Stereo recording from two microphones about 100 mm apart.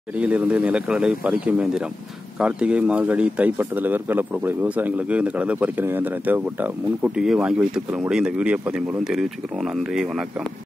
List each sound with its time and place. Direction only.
0.2 s speech: 15° right (ahead or behind)